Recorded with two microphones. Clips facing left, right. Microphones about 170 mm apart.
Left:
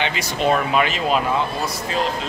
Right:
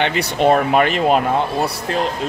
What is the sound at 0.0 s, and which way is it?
Speech, 55° right (ahead or behind).